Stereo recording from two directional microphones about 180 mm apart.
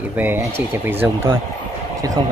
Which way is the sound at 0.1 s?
10° right (ahead or behind).